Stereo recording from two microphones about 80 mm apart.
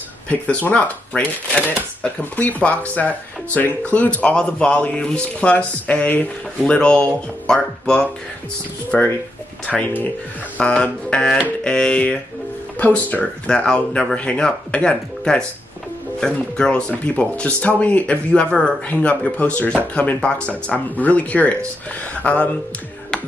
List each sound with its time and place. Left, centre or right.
0.3 s speech: centre
9.7 s speech: centre
10.6 s speech: centre